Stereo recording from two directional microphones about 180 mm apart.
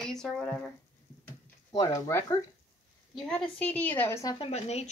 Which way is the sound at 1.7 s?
15° left (ahead or behind).